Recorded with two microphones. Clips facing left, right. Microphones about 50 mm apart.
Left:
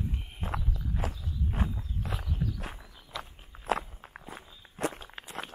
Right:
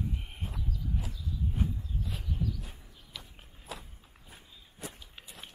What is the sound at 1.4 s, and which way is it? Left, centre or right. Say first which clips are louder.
Walk: left 1 dB; left.